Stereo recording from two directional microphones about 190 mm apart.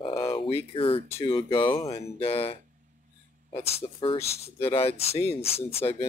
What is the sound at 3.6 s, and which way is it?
Speech, 30° left (ahead or behind).